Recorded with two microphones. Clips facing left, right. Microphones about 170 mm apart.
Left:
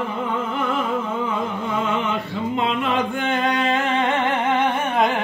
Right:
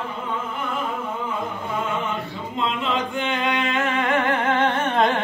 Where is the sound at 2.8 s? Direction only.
50° left (ahead or behind); by 5.2 s 10° left (ahead or behind).